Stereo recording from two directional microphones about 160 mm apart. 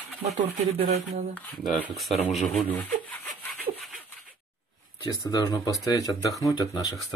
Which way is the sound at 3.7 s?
40° right (ahead or behind).